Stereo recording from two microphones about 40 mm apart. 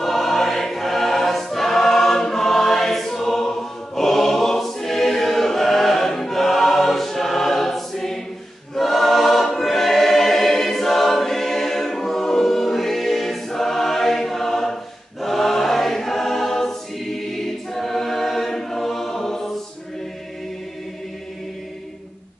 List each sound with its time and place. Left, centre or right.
0.0 s choir: centre